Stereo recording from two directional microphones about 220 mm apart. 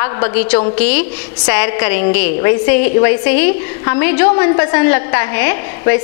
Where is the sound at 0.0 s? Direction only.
15° left (ahead or behind).